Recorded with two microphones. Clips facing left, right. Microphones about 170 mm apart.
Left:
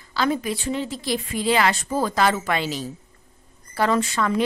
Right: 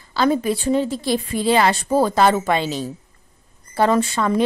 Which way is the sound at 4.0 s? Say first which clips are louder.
Right 3 dB; 30° right (ahead or behind).